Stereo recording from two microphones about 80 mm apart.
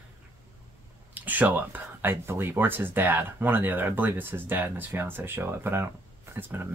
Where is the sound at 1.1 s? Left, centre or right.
Right.